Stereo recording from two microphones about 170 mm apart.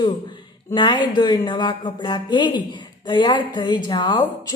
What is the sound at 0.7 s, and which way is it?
Speech, 25° left (ahead or behind).